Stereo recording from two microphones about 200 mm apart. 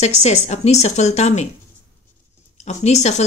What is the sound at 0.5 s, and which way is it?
Speech, 35° left (ahead or behind).